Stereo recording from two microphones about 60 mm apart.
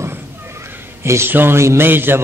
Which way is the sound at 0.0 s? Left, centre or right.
Right.